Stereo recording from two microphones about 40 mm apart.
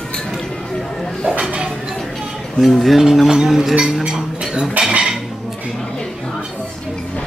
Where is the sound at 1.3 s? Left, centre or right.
Right.